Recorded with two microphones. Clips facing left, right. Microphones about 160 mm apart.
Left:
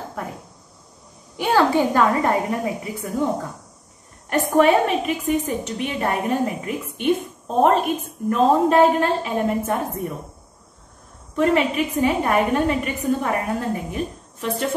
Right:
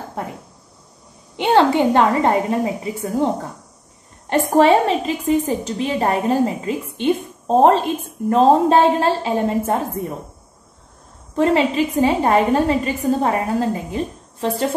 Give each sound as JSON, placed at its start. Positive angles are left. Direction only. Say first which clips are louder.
{"t": 1.3, "sound": "a woman's voice", "louder": "right 3 dB", "side_deg": -25}
{"t": 4.3, "sound": "a woman's voice", "louder": "right 3 dB", "side_deg": -30}
{"t": 11.3, "sound": "a woman's voice", "louder": "right 2 dB", "side_deg": -30}